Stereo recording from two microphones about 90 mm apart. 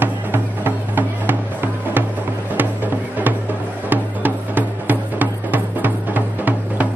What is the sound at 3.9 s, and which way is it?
Music, 20° right (ahead or behind).